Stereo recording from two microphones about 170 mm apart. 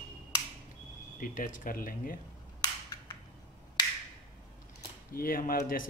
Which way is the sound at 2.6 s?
20° left (ahead or behind).